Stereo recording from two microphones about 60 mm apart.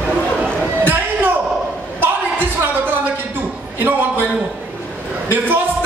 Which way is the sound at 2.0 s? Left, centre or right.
Right.